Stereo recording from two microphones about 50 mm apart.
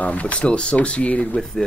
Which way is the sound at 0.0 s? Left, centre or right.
Left.